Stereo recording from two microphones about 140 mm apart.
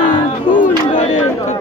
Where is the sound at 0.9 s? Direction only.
65° left (ahead or behind).